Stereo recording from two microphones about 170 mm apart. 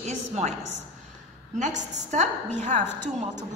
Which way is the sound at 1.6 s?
45° right (ahead or behind).